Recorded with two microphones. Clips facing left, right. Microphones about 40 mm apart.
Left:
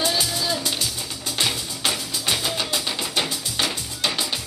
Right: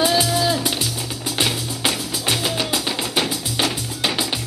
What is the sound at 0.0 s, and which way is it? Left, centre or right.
Music, centre.